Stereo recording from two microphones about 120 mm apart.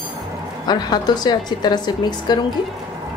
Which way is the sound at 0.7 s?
35° left (ahead or behind).